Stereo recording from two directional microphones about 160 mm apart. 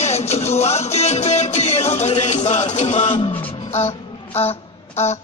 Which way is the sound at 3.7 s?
40° left (ahead or behind).